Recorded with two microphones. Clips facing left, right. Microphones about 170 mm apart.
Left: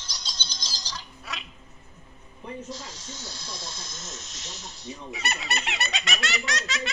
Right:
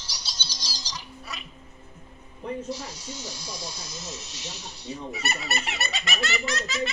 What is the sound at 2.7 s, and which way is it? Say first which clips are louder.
Hiss: right 4 dB; 10° right (ahead or behind).